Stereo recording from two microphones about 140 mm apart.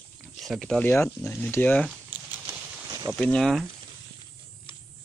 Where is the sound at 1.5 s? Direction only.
10° left (ahead or behind).